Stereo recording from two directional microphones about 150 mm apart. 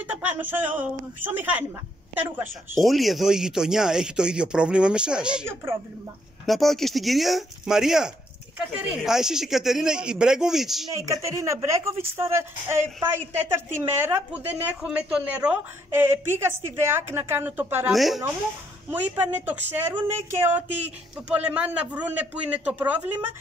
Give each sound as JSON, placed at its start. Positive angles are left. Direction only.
{"t": 0.0, "sound": "a woman's voice", "side_deg": -10}
{"t": 2.8, "sound": "speech", "side_deg": 0}
{"t": 10.9, "sound": "a woman's voice", "side_deg": -20}
{"t": 17.9, "sound": "speech", "side_deg": 0}
{"t": 18.9, "sound": "a woman's voice", "side_deg": -10}